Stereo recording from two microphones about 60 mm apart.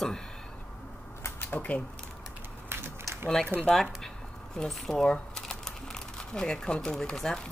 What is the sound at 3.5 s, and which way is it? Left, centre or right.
Speech, right.